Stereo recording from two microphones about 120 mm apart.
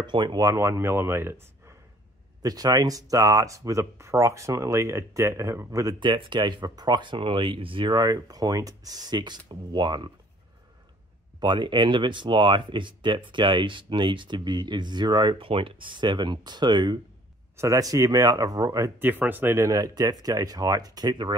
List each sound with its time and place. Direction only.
0.0 s speech: 40° right (ahead or behind)
0.4 s speech: 25° right (ahead or behind)
2.4 s speech: 30° right (ahead or behind)
5.9 s speech: 45° right (ahead or behind)
11.3 s speech: 40° right (ahead or behind)
18.9 s speech: 15° right (ahead or behind); by 21.4 s 35° right (ahead or behind)